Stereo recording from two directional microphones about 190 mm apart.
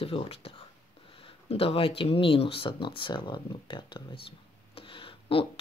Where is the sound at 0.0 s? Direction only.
30° left (ahead or behind).